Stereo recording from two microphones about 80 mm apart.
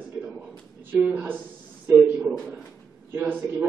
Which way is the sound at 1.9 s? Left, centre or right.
Centre.